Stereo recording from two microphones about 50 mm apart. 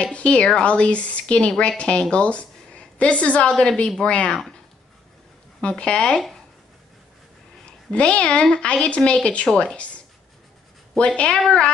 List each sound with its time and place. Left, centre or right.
0.0 s a woman's voice: left
5.6 s a woman's voice: left
7.6 s a woman's voice: left
11.0 s a woman's voice: left